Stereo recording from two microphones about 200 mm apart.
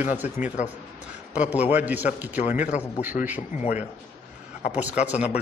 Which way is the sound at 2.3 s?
35° left (ahead or behind).